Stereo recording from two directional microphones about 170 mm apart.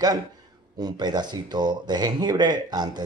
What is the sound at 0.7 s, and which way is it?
Speech, 25° right (ahead or behind).